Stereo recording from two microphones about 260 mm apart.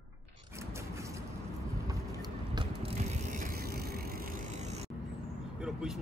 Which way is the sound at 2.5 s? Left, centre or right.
Right.